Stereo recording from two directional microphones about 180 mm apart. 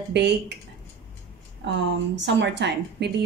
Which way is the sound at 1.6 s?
75° right (ahead or behind).